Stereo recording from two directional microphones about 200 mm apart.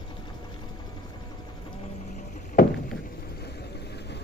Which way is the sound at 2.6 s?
50° left (ahead or behind).